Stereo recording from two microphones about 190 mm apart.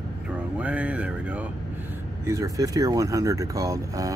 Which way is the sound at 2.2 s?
15° right (ahead or behind).